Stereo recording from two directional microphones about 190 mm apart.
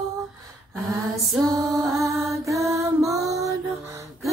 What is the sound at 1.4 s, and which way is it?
Female singing, 20° right (ahead or behind).